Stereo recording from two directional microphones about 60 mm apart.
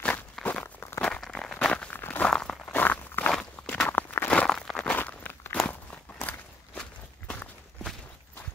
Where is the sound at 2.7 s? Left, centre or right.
Left.